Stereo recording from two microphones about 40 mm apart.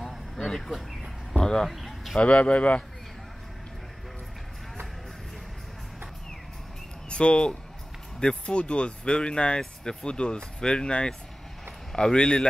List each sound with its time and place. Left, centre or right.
0.6 s speech: centre
1.4 s speech: centre
1.7 s a sound: centre
2.1 s speech: left
7.1 s speech: left